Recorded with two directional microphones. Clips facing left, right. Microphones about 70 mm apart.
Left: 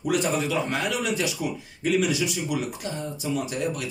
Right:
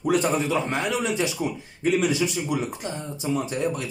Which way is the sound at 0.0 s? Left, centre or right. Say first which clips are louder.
Right 2 dB; right.